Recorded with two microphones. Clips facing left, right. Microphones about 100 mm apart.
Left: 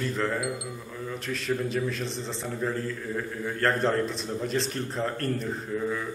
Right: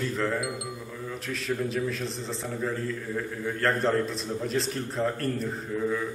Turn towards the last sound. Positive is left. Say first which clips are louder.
# right 1 dB
turn(degrees=0)  # may be behind; listen again after turning